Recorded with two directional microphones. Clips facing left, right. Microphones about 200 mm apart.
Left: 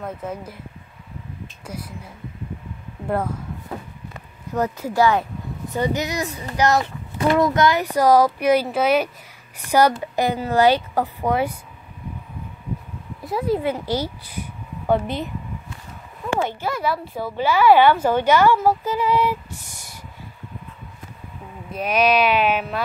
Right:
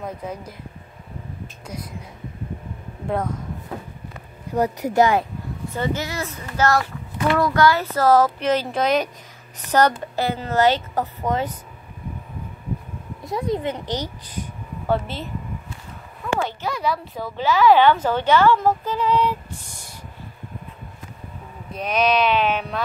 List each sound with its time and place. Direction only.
0.0 s speech: 5° left (ahead or behind)
3.1 s a woman's voice: 5° left (ahead or behind)
4.6 s speech: 15° right (ahead or behind)
5.8 s a woman's voice: 15° left (ahead or behind)
13.2 s speech: 5° left (ahead or behind)
16.6 s a woman's voice: 5° left (ahead or behind)
21.7 s a woman's voice: 5° left (ahead or behind)